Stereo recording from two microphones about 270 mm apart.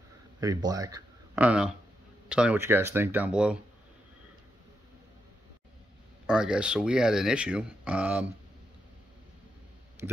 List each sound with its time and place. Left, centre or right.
0.4 s speech: centre
6.2 s speech: centre